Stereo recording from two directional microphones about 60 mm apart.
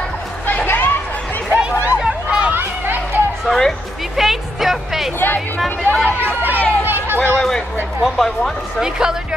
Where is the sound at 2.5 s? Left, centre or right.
Right.